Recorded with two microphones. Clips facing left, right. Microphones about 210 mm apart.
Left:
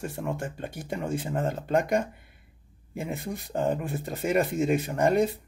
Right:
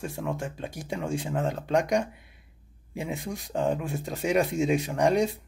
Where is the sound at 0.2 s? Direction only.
Centre (ahead or behind).